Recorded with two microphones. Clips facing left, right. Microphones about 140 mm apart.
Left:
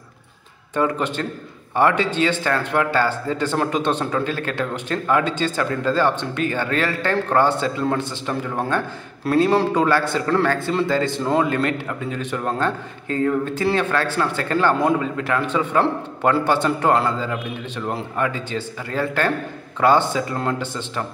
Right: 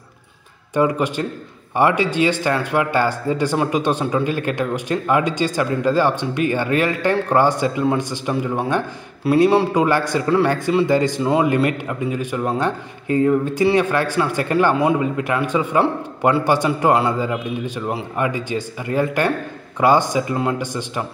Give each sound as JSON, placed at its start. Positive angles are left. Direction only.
{"t": 0.7, "sound": "speech", "side_deg": -10}
{"t": 9.2, "sound": "a man's voice", "side_deg": -5}